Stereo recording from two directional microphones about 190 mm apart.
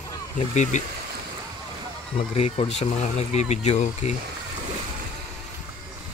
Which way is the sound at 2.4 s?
35° left (ahead or behind).